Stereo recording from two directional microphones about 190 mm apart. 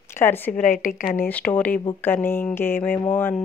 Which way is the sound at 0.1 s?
10° left (ahead or behind).